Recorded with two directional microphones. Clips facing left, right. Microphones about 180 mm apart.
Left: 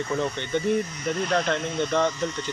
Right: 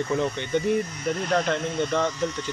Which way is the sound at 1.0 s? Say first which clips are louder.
Right 1 dB; 5° right (ahead or behind).